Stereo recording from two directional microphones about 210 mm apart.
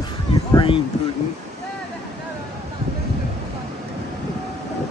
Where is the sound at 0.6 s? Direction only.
25° left (ahead or behind).